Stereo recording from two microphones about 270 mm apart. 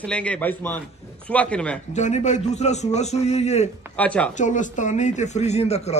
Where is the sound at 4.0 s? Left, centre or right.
Centre.